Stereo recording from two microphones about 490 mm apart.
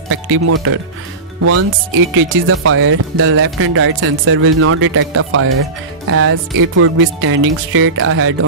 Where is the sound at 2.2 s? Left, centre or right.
Right.